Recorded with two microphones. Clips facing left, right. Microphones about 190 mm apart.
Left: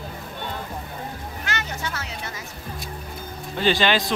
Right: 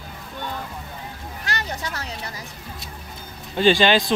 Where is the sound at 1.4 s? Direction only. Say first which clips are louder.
Right 1 dB; 35° right (ahead or behind).